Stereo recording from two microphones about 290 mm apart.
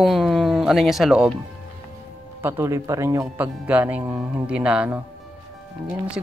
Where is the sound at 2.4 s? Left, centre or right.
Centre.